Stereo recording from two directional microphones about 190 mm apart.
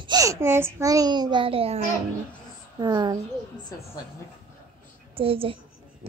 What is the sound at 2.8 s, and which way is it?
Speech, 20° right (ahead or behind).